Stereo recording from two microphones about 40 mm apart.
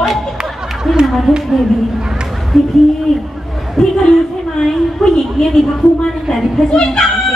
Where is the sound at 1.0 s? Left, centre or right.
Centre.